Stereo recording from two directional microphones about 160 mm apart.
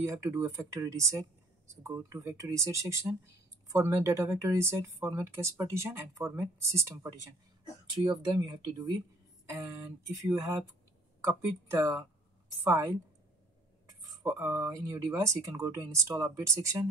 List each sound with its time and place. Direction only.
0.0 s speech: 20° right (ahead or behind)
7.9 s speech: 30° right (ahead or behind)